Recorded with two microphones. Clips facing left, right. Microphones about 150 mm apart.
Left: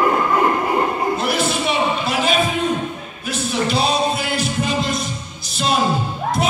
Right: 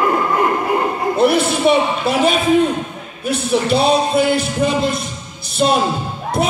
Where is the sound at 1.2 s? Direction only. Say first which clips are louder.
Right 6 dB; 55° right (ahead or behind).